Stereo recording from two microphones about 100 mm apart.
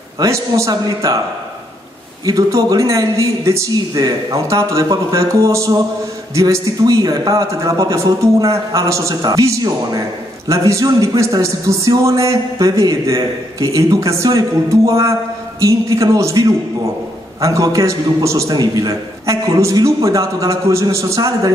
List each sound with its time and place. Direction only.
0.2 s a man's voice: 35° right (ahead or behind)
2.2 s a man's voice: 35° right (ahead or behind)